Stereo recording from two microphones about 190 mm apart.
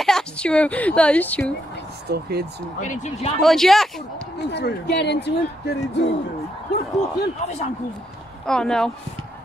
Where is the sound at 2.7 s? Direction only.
40° left (ahead or behind).